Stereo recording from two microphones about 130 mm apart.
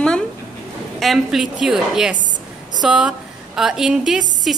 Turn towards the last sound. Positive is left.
turn(degrees=0)  # may be behind; listen again after turning